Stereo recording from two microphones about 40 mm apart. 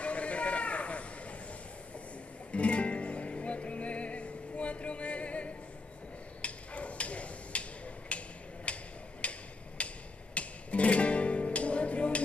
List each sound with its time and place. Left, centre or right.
0.0 s a sound: left
2.5 s music: left
6.4 s a sound: left
8.7 s tick-tock: left
9.2 s hammer: left
10.3 s music: left